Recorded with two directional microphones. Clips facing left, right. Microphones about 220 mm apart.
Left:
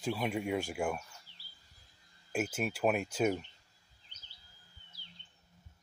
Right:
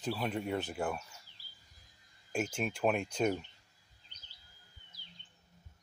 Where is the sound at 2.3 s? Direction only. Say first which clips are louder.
Left 1 dB; 5° left (ahead or behind).